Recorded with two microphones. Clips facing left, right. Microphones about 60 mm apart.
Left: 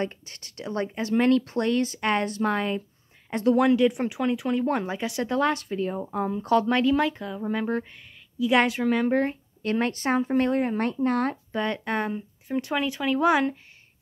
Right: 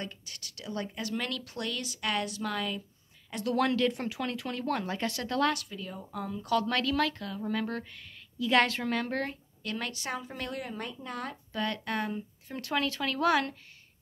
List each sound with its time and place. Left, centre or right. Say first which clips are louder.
0.0 s speech: left 10 dB; left
3.5 s speech: left 5 dB; centre
9.6 s speech: left 11 dB; left
10.8 s speech: left 13 dB; left
11.5 s speech: left 2 dB; left